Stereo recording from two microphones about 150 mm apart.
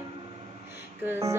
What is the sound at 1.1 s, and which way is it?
Music, 20° right (ahead or behind).